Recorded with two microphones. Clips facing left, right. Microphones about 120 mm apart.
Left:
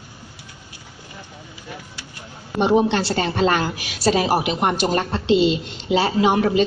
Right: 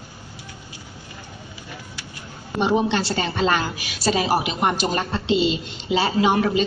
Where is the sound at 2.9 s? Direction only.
55° left (ahead or behind).